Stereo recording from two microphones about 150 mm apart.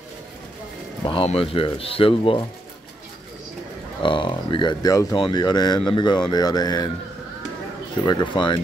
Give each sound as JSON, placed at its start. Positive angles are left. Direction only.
{"t": 1.0, "sound": "speech", "side_deg": 40}
{"t": 4.0, "sound": "speech", "side_deg": 35}
{"t": 8.0, "sound": "speech", "side_deg": 30}